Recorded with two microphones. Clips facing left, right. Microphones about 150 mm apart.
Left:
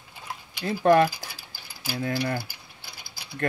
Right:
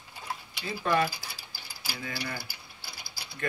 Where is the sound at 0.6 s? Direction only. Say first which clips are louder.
Left 9 dB; 55° left (ahead or behind).